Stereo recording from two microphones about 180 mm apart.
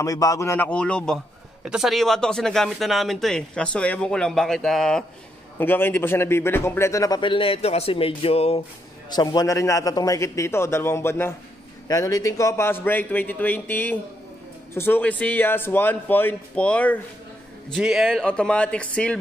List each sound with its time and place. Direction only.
0.0 s a man's voice: 20° left (ahead or behind)
9.1 s a man's voice: 25° left (ahead or behind); by 19.1 s 5° left (ahead or behind)